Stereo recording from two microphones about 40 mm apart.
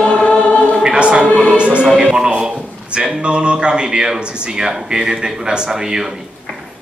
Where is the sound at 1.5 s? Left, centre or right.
Right.